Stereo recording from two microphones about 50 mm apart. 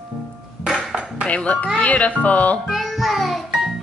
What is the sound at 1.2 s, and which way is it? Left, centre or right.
Music, left.